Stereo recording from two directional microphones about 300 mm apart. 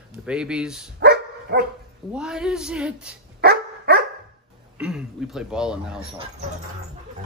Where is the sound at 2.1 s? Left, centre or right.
Centre.